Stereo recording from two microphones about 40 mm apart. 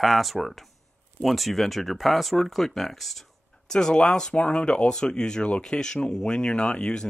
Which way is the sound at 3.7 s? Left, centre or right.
Centre.